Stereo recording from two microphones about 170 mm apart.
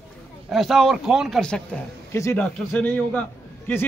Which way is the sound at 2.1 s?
15° left (ahead or behind).